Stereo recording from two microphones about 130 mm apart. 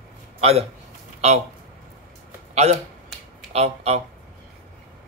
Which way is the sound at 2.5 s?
55° right (ahead or behind).